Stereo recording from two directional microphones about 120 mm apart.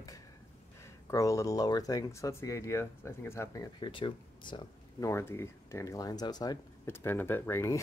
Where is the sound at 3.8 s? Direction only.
45° left (ahead or behind).